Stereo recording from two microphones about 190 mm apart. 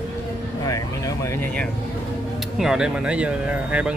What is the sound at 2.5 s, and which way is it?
Speech, 5° right (ahead or behind).